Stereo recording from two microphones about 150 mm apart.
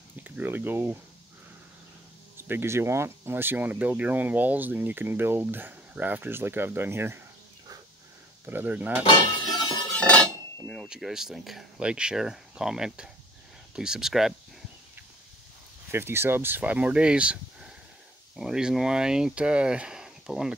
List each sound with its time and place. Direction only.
0.1 s speech: 10° right (ahead or behind)
2.4 s speech: 15° right (ahead or behind)
8.5 s speech: 10° right (ahead or behind)
9.1 s cutlery: 30° left (ahead or behind)
10.7 s speech: centre (ahead or behind)
15.9 s speech: 15° right (ahead or behind)